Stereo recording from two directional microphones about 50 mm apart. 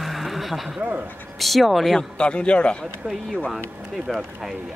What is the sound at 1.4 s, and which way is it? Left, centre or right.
Speech, centre.